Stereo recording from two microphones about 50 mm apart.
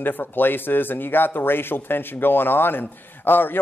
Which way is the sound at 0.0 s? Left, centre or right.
Left.